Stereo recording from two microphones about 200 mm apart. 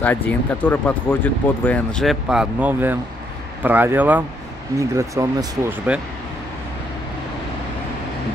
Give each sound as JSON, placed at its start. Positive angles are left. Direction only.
{"t": 0.0, "sound": "speech", "side_deg": 10}